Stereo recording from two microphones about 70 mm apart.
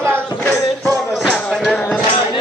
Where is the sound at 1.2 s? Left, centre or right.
Centre.